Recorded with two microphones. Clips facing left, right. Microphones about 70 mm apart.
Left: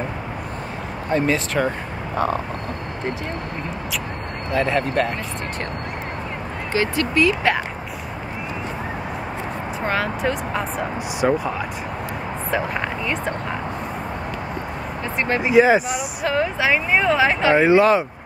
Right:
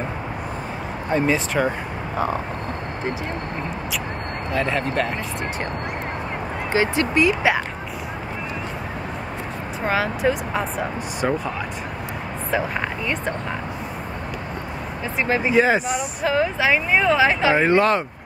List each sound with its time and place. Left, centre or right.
1.1 s speech: centre
4.5 s speech: centre
6.7 s speech: centre
9.8 s speech: centre
15.4 s speech: centre